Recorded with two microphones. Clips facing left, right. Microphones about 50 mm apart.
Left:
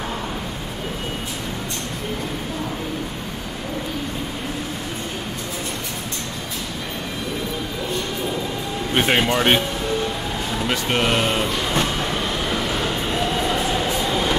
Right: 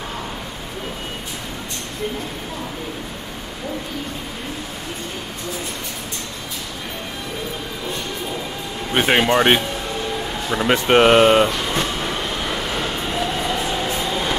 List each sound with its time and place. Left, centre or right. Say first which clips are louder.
8.9 s speech: right 3 dB; centre
10.5 s speech: right 8 dB; right